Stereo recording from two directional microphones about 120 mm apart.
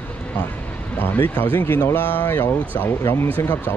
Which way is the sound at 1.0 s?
15° left (ahead or behind).